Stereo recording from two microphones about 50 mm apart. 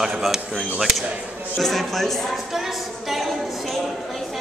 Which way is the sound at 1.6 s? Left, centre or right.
Centre.